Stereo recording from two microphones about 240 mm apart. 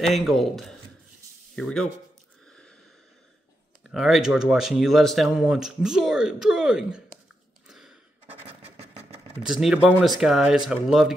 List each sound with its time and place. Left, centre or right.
0.1 s speech: centre
3.9 s speech: centre
7.6 s a sound: centre
8.5 s engine: right
9.5 s speech: centre